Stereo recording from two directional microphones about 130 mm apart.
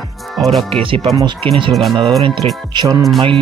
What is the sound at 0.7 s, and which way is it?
Speech, 45° right (ahead or behind).